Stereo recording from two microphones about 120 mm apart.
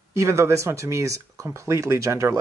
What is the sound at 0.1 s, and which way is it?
A man's voice, 25° right (ahead or behind).